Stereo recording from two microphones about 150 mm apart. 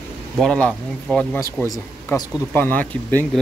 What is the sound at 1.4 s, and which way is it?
Speech, 20° left (ahead or behind).